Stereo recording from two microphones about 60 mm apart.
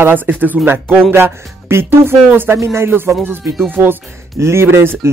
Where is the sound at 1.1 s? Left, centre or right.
Right.